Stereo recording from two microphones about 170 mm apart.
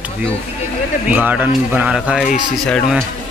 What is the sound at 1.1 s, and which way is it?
Speech, 10° right (ahead or behind).